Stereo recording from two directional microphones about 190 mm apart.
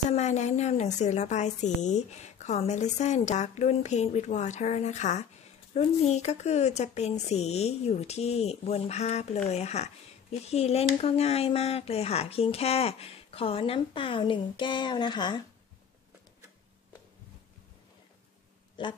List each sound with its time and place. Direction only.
0.1 s a woman's voice: 35° left (ahead or behind)
18.8 s speech: 25° left (ahead or behind)